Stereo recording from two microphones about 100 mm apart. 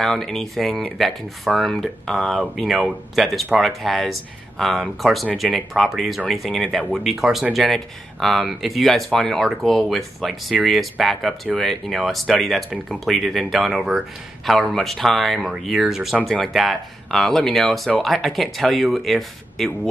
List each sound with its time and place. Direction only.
0.0 s speech: 5° left (ahead or behind)